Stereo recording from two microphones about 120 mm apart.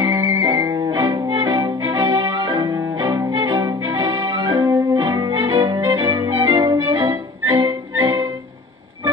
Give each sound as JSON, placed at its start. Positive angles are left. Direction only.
{"t": 0.0, "sound": "music", "side_deg": -30}
{"t": 6.8, "sound": "music", "side_deg": -25}